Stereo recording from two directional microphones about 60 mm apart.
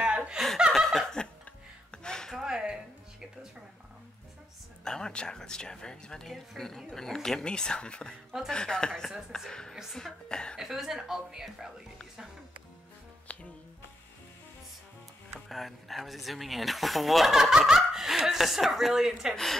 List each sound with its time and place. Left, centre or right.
0.0 s chuckle: centre
0.7 s laughter: centre
1.4 s music: centre
2.4 s music: centre
4.8 s speech: centre
10.6 s a woman's voice: centre
13.3 s music: left
15.4 s speech: centre